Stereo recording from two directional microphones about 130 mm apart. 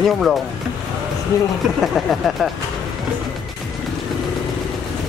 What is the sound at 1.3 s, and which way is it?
Speech, 25° left (ahead or behind).